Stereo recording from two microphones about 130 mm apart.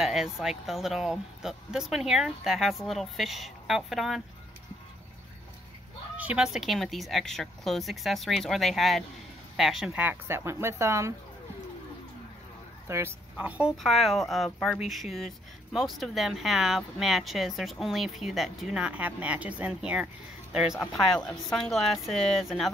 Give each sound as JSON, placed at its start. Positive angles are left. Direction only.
{"t": 0.0, "sound": "speech", "side_deg": -5}
{"t": 6.1, "sound": "speech", "side_deg": -10}
{"t": 10.0, "sound": "speech", "side_deg": -20}
{"t": 12.8, "sound": "speech", "side_deg": -20}